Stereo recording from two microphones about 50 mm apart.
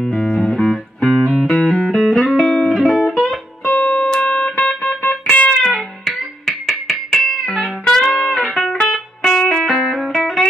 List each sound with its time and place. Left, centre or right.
0.0 s music: centre
3.3 s music: centre
6.0 s music: centre